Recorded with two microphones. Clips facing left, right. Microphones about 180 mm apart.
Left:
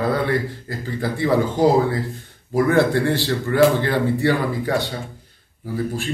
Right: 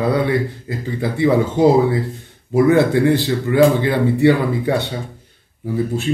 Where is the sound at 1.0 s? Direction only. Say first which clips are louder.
Right 3 dB; 20° right (ahead or behind).